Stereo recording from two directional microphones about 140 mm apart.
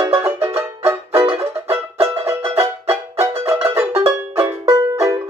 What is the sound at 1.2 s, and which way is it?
Music, 45° right (ahead or behind).